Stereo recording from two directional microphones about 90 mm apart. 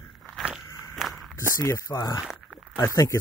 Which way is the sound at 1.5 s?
35° left (ahead or behind).